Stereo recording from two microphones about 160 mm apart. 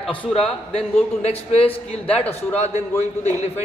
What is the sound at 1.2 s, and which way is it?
Speech, 40° left (ahead or behind).